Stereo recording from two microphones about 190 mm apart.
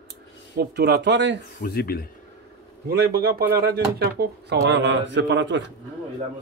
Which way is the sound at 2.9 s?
55° right (ahead or behind).